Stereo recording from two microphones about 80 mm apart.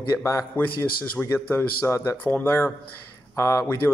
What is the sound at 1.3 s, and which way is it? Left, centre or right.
A man's voice, left.